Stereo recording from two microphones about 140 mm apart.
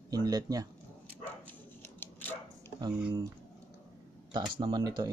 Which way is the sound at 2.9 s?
10° right (ahead or behind).